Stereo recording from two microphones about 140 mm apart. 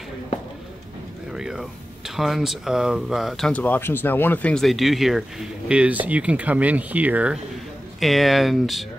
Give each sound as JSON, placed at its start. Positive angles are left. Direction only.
{"t": 1.3, "sound": "speech", "side_deg": -5}
{"t": 8.0, "sound": "speech", "side_deg": 0}